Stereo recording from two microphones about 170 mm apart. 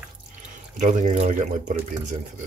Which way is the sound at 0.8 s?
45° right (ahead or behind).